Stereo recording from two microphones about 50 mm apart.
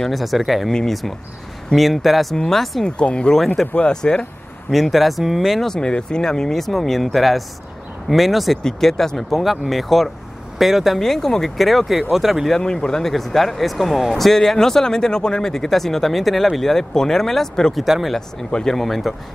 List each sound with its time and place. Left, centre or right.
0.0 s speech: centre
0.7 s speech: centre
1.7 s speech: centre
2.8 s speech: left
4.6 s speech: centre
5.6 s speech: centre
11.0 s speech: centre
12.5 s speech: centre
17.7 s speech: centre
18.5 s speech: centre